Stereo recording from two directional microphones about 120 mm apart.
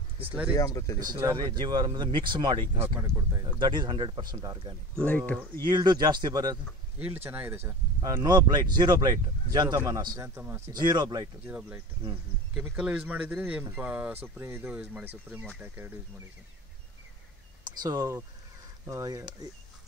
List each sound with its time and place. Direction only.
0.3 s speech: 10° right (ahead or behind)
0.6 s speech: 25° left (ahead or behind)
0.9 s speech: 35° right (ahead or behind)
3.0 s speech: 20° right (ahead or behind)
3.5 s speech: 40° right (ahead or behind)
4.9 s speech: 10° left (ahead or behind)
5.7 s speech: 35° right (ahead or behind)
7.2 s speech: 20° right (ahead or behind)
8.0 s speech: 35° right (ahead or behind)
10.7 s speech: 40° right (ahead or behind)
11.4 s speech: 15° right (ahead or behind)
17.6 s speech: 30° right (ahead or behind)